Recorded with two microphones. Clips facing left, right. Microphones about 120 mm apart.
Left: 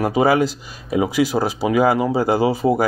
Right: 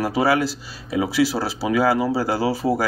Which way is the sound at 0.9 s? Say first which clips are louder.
Left 2 dB; 45° left (ahead or behind).